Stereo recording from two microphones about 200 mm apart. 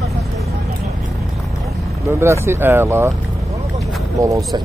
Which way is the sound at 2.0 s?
15° right (ahead or behind).